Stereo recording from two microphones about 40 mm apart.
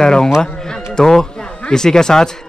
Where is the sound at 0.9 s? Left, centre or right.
Centre.